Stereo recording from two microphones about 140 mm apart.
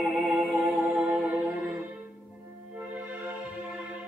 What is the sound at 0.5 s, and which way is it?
Music, 5° right (ahead or behind).